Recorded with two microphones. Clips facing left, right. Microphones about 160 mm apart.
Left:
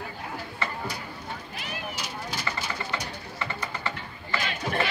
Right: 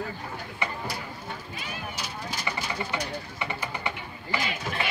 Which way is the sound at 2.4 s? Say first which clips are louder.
Right 1 dB; 15° right (ahead or behind).